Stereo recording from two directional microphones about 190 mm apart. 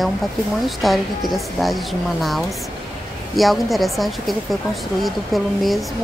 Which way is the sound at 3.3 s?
Centre (ahead or behind).